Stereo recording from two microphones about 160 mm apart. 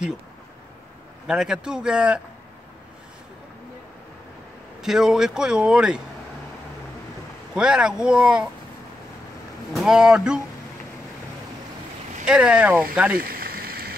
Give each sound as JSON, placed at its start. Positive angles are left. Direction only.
{"t": 1.2, "sound": "speech", "side_deg": -5}
{"t": 4.8, "sound": "speech", "side_deg": -5}
{"t": 7.5, "sound": "speech", "side_deg": -5}
{"t": 9.7, "sound": "speech", "side_deg": 0}
{"t": 12.3, "sound": "speech", "side_deg": -5}
{"t": 13.2, "sound": "rain on surface", "side_deg": -70}